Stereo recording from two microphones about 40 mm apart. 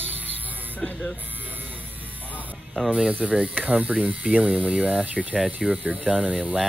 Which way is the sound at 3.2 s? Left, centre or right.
Centre.